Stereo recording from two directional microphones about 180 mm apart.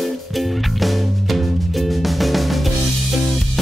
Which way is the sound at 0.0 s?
Centre (ahead or behind).